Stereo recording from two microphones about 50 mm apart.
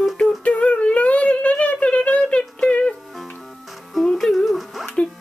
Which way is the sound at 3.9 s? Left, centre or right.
Centre.